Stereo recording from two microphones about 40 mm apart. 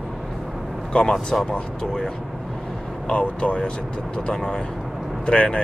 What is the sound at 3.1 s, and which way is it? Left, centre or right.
Speech, left.